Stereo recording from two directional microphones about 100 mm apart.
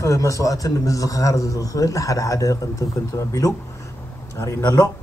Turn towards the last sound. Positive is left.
turn(degrees=25)  # may be behind; listen again after turning